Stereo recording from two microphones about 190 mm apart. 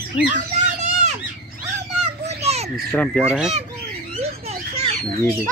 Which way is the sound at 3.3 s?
5° right (ahead or behind).